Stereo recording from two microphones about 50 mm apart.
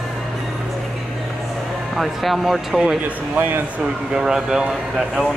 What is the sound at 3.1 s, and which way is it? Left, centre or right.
Speech, right.